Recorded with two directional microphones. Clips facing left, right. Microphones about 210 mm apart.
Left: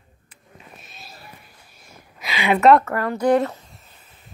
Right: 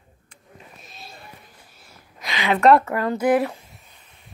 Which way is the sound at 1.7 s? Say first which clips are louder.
Left 2 dB; 15° left (ahead or behind).